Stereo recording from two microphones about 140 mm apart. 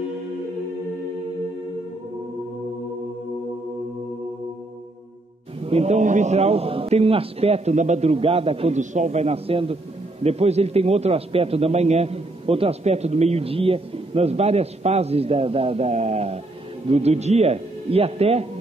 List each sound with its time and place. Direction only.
5.6 s a man's voice: 45° right (ahead or behind)